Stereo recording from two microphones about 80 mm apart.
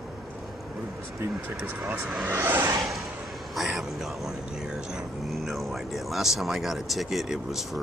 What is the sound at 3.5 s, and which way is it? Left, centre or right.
Speech, centre.